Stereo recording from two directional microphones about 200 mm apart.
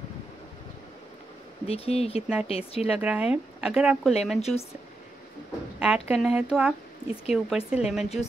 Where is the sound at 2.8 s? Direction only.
5° right (ahead or behind).